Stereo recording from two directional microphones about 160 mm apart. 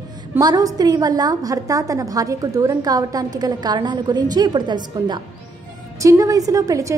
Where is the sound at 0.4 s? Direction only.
25° right (ahead or behind).